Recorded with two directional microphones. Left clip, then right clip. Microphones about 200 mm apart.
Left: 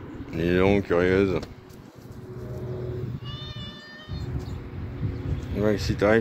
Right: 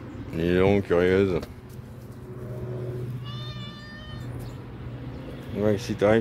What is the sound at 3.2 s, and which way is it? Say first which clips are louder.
Cat: left 1 dB; 15° right (ahead or behind).